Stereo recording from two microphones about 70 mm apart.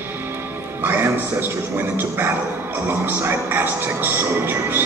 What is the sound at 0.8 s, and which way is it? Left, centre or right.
Speech, right.